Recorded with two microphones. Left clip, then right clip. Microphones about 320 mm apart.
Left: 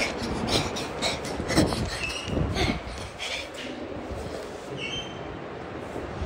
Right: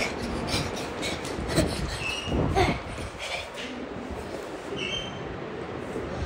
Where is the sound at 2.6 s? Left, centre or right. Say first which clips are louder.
Right 4 dB; centre.